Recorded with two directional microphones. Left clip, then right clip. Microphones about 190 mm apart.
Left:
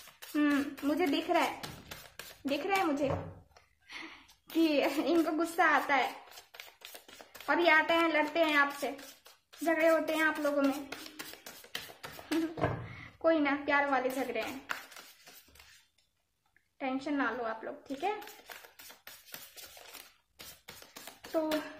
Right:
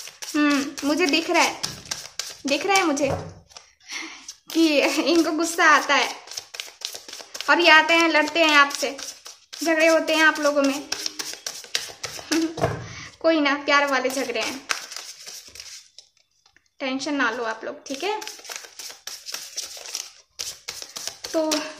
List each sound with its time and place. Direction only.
0.3 s a woman's voice: 20° right (ahead or behind)
7.3 s a woman's voice: 15° right (ahead or behind)
12.3 s speech: 10° right (ahead or behind)
16.8 s a woman's voice: 15° right (ahead or behind)
20.9 s a sound: 5° right (ahead or behind)